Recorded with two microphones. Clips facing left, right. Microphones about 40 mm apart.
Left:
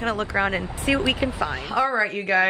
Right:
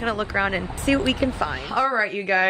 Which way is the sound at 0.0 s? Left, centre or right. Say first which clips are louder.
Even; centre.